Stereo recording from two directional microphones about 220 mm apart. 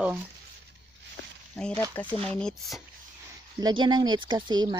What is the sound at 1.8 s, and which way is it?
Speech, 10° left (ahead or behind).